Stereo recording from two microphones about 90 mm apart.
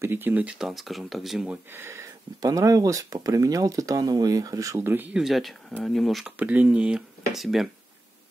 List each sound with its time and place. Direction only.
0.0 s speech: 25° right (ahead or behind)
0.6 s speech: centre (ahead or behind)
1.5 s speech: 25° right (ahead or behind)
2.4 s speech: 40° right (ahead or behind)
4.8 s speech: 20° right (ahead or behind)
5.1 s speech: centre (ahead or behind)
6.3 s speech: 15° right (ahead or behind)